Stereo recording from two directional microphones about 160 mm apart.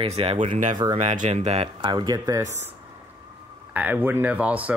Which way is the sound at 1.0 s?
50° right (ahead or behind).